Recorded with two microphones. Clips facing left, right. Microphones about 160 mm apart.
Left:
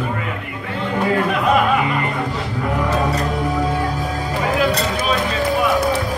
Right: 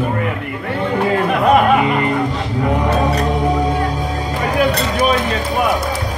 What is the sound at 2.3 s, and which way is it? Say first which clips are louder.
Music: right 4 dB; 20° right (ahead or behind).